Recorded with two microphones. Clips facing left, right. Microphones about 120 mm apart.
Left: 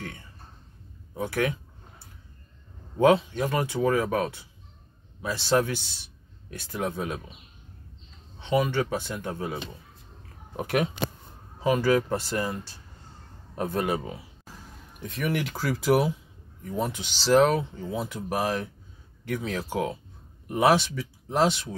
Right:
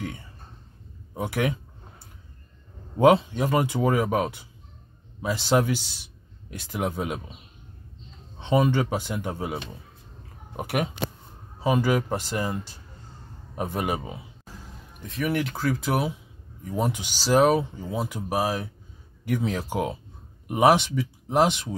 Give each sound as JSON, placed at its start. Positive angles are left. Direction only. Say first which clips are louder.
{"t": 1.1, "sound": "speech", "louder": "right 1 dB", "side_deg": -15}
{"t": 3.0, "sound": "speech", "louder": "right 2 dB", "side_deg": -15}
{"t": 8.4, "sound": "speech", "louder": "right 3 dB", "side_deg": -25}
{"t": 13.6, "sound": "speech", "louder": "left 1 dB", "side_deg": -15}
{"t": 15.0, "sound": "speech", "louder": "right 2 dB", "side_deg": 0}
{"t": 16.6, "sound": "speech", "louder": "right 2 dB", "side_deg": -15}